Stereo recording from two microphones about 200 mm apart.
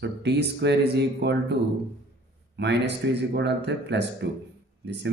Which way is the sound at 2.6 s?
60° right (ahead or behind).